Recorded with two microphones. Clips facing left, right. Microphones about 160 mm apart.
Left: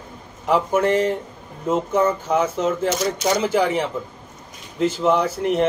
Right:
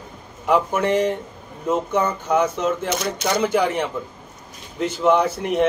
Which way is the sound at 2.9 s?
60° right (ahead or behind).